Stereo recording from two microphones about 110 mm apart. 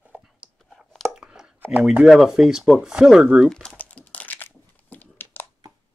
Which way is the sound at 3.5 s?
10° left (ahead or behind).